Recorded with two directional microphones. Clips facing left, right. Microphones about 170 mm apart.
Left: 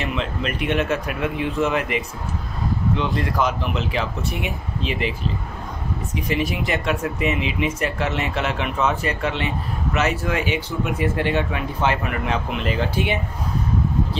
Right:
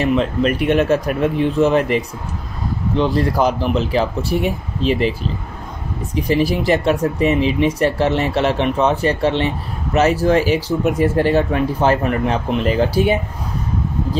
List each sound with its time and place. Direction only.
0.0 s speech: 40° right (ahead or behind)
6.1 s speech: 35° right (ahead or behind)